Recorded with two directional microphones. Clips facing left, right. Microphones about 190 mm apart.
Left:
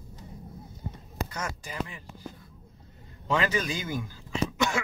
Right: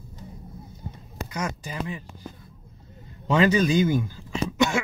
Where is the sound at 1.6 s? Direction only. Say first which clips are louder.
Right 4 dB; 25° right (ahead or behind).